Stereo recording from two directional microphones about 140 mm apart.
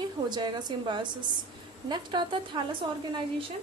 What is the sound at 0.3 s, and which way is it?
A woman's voice, 30° right (ahead or behind).